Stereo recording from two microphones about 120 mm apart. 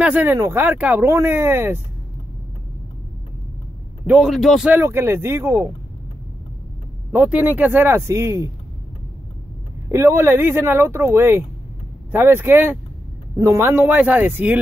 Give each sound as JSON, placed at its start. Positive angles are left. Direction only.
{"t": 0.0, "sound": "speech", "side_deg": -15}
{"t": 4.2, "sound": "speech", "side_deg": 0}
{"t": 4.6, "sound": "speech", "side_deg": -20}
{"t": 7.1, "sound": "speech", "side_deg": -15}
{"t": 9.8, "sound": "speech", "side_deg": -20}